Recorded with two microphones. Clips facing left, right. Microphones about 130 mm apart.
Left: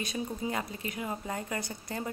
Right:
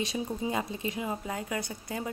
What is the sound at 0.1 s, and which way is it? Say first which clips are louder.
Speech: right 2 dB; 20° right (ahead or behind).